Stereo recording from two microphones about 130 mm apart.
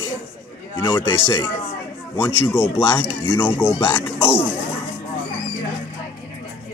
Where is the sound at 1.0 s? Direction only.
30° left (ahead or behind).